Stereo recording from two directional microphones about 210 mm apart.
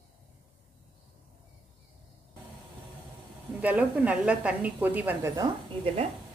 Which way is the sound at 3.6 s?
5° right (ahead or behind).